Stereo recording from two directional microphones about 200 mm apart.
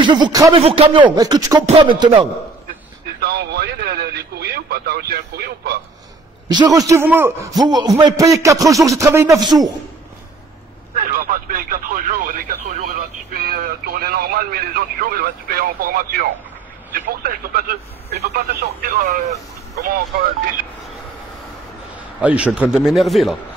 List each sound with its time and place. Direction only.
0.0 s speech: 20° right (ahead or behind)
1.1 s speech: 20° right (ahead or behind)
3.2 s speech: 50° right (ahead or behind)
6.5 s a man's voice: 20° right (ahead or behind)
11.0 s speech: 45° right (ahead or behind)
22.2 s speech: 5° right (ahead or behind)